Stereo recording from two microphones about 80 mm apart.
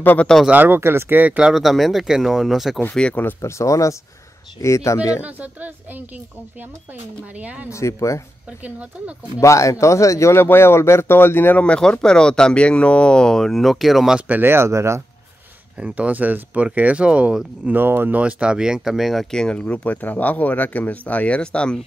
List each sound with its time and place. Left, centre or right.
0.0 s speech: left
0.5 s speech: right
1.4 s speech: centre
2.9 s speech: centre
3.3 s speech: left
5.2 s speech: right
7.3 s speech: centre
7.7 s speech: left
8.6 s speech: centre
9.4 s speech: left
11.6 s speech: centre
14.2 s speech: right
15.8 s speech: centre
17.7 s speech: right; by 21.7 s centre